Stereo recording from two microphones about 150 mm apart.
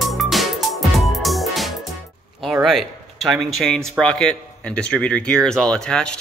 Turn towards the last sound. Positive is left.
turn(degrees=5)  # may be behind; listen again after turning